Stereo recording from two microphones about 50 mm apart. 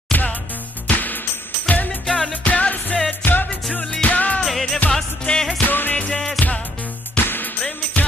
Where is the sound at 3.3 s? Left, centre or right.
Left.